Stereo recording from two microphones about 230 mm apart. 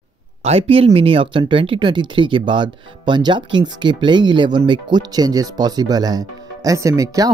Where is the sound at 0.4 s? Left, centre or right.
Right.